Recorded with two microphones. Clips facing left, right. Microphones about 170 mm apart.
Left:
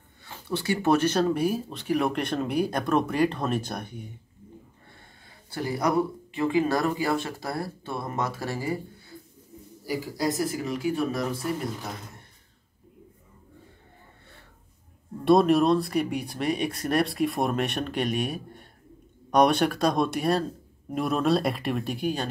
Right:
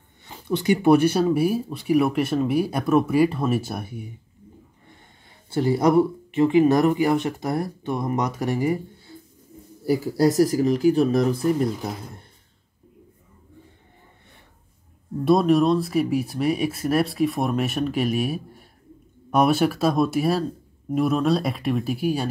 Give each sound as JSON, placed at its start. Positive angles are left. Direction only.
{"t": 0.2, "sound": "speech", "side_deg": -15}
{"t": 5.5, "sound": "speech", "side_deg": -25}
{"t": 10.4, "sound": "speech", "side_deg": -40}
{"t": 15.2, "sound": "speech", "side_deg": 0}